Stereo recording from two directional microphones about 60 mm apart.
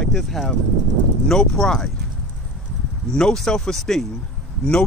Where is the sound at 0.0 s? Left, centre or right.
Centre.